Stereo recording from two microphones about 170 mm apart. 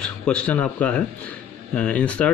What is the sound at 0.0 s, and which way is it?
Speech, 5° left (ahead or behind).